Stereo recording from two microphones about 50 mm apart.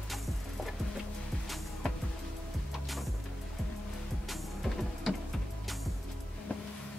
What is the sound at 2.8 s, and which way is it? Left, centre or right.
Music, centre.